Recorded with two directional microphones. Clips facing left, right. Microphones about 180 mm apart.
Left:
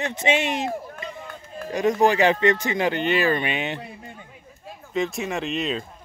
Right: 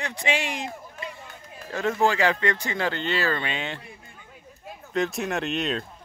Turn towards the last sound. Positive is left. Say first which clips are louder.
# left 1 dB
turn(degrees=0)  # may be behind; listen again after turning